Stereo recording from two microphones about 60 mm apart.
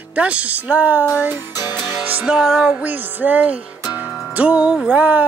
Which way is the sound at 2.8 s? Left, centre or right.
Right.